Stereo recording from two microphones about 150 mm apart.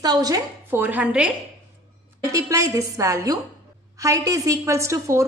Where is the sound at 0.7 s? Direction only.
10° right (ahead or behind).